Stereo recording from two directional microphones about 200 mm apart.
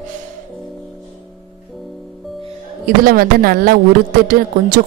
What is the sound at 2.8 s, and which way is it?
Speech, 45° right (ahead or behind).